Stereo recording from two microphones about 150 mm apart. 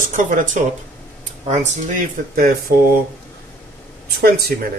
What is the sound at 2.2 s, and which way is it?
Speech, 60° right (ahead or behind).